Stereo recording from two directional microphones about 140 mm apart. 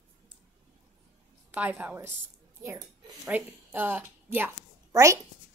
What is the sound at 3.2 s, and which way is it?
A woman's voice, 15° right (ahead or behind).